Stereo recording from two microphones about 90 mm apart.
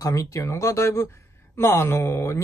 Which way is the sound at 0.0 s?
40° left (ahead or behind).